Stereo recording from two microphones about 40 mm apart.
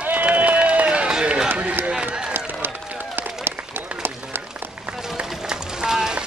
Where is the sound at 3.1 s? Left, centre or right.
Right.